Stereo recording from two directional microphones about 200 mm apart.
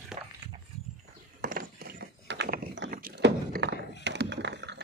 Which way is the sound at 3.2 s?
60° right (ahead or behind).